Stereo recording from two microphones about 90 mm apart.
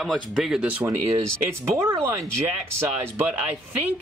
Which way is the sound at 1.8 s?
30° right (ahead or behind).